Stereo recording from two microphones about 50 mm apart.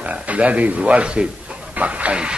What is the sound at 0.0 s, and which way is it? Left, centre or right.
A man's voice, right.